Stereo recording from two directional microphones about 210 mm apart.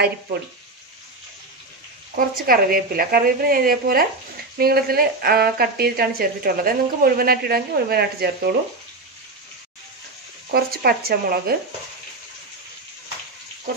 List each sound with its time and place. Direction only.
2.1 s speech: 45° right (ahead or behind)
10.5 s speech: 45° right (ahead or behind)